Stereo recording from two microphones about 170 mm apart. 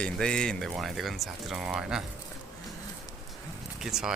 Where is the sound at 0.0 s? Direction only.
5° left (ahead or behind).